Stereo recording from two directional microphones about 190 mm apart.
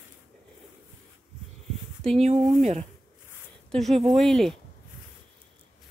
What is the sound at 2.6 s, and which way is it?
Speech, 35° right (ahead or behind).